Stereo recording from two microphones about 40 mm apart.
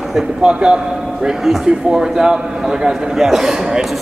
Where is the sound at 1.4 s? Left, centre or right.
Centre.